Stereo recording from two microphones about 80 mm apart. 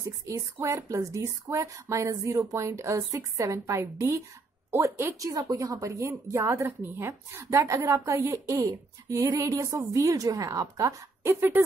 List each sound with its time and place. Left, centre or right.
0.0 s a woman's voice: right
5.2 s a woman's voice: right